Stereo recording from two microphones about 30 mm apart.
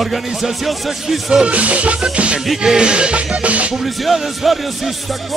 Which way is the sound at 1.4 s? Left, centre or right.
Right.